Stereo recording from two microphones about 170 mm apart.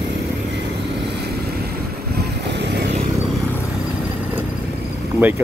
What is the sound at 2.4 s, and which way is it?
Vehicle, 85° right.